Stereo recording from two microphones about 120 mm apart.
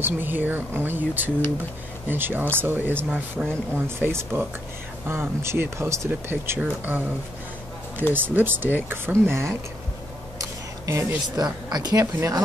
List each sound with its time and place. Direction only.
0.0 s speech: 15° right (ahead or behind)
8.1 s speech: 15° right (ahead or behind)
10.9 s speech: 25° right (ahead or behind)